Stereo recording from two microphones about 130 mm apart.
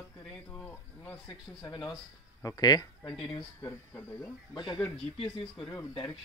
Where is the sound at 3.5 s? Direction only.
15° left (ahead or behind).